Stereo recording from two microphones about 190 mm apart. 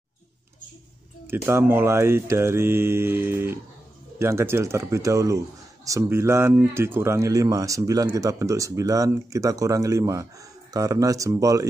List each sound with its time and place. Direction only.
1.2 s speech: 10° right (ahead or behind)